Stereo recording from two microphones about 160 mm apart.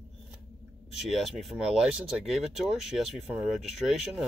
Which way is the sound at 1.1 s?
Centre (ahead or behind).